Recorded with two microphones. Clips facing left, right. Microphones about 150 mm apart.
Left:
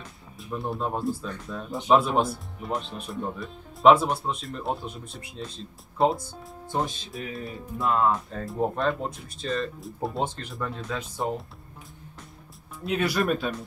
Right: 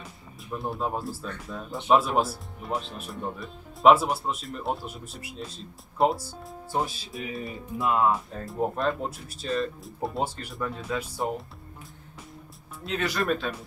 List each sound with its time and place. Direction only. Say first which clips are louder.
0.0 s speech: left 1 dB; centre (ahead or behind)
12.8 s speech: left 3 dB; 10° left (ahead or behind)